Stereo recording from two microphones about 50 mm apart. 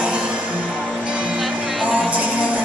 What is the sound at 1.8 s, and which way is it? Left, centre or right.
Music, right.